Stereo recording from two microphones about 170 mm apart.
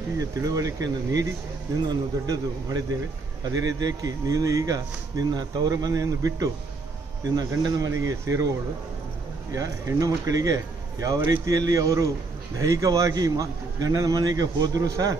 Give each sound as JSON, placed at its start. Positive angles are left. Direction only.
{"t": 0.2, "sound": "speech", "side_deg": -20}
{"t": 9.5, "sound": "speech", "side_deg": -20}